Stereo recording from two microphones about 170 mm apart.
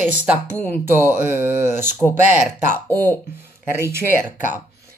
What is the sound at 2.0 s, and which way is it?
Speech, centre (ahead or behind).